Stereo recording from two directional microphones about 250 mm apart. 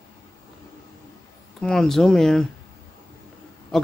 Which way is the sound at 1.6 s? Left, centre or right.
Centre.